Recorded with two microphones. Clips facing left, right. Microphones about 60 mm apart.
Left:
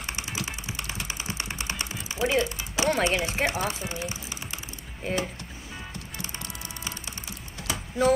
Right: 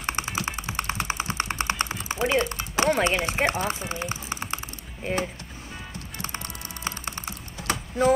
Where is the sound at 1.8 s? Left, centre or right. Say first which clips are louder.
Right 3 dB; right.